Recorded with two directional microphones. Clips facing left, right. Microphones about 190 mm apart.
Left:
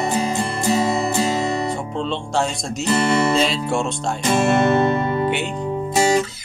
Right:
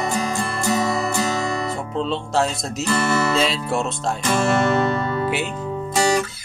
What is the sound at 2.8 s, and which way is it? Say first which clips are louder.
Music: left 3 dB; 25° left (ahead or behind).